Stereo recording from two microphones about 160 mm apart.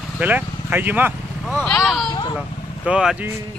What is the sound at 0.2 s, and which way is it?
Speech, 10° right (ahead or behind).